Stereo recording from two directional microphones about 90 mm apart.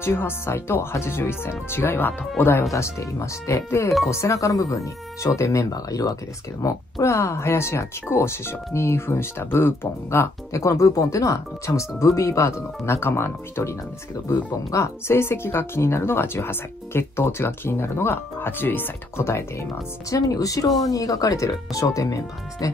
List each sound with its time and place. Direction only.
0.0 s speech: 25° left (ahead or behind)
2.7 s speech: 35° left (ahead or behind)
20.1 s speech: 40° left (ahead or behind)